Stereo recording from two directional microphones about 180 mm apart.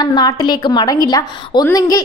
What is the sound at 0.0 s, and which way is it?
A woman's voice, 20° left (ahead or behind).